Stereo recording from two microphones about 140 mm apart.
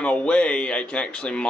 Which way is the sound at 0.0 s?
10° left (ahead or behind).